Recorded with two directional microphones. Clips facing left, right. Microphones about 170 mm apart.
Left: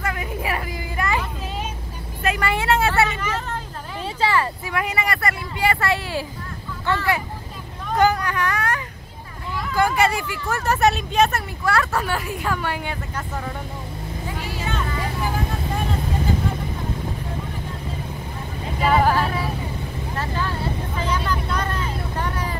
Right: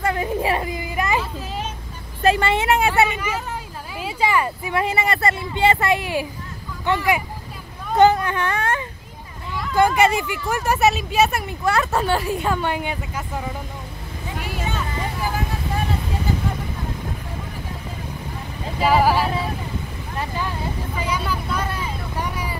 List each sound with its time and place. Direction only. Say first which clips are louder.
0.0 s a sound: right 5 dB; 30° right (ahead or behind)
2.2 s vehicle: right 4 dB; 25° right (ahead or behind); by 3.5 s 10° right (ahead or behind)
4.0 s speech: right 1 dB; 15° right (ahead or behind)
4.7 s speech: right 3 dB; 25° right (ahead or behind)
7.9 s speech: right 4 dB; 25° right (ahead or behind); by 11.4 s 10° right (ahead or behind)
11.6 s speech: right 2 dB; 20° right (ahead or behind)
13.1 s speech: right 1 dB; 10° right (ahead or behind)
18.8 s music: right 1 dB; 5° right (ahead or behind)
21.0 s vehicle: left 1 dB; 10° right (ahead or behind)